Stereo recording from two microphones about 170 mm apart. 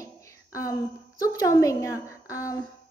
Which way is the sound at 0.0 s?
20° left (ahead or behind).